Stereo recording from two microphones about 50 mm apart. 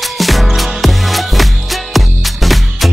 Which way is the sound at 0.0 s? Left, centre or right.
Centre.